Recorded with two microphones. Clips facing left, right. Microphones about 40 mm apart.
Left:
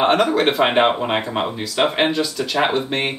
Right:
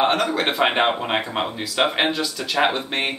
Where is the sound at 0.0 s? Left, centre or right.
Centre.